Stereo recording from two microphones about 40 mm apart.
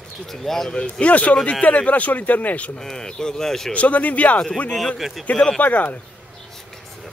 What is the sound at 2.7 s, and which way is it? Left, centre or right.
Speech, centre.